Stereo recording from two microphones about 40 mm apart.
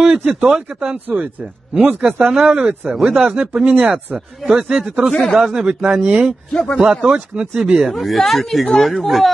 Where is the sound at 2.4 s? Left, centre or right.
Right.